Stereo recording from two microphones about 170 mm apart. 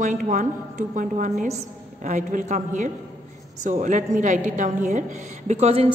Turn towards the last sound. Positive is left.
turn(degrees=-40)  # may be behind; listen again after turning